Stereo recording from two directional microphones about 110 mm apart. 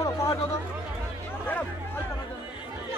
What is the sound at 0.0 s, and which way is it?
Chatter, 30° left (ahead or behind).